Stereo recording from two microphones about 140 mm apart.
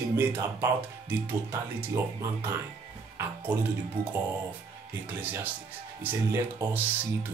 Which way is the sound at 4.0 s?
90° right.